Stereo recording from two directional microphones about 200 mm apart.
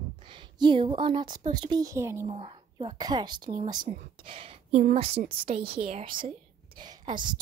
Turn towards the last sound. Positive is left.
turn(degrees=-25)  # may be behind; listen again after turning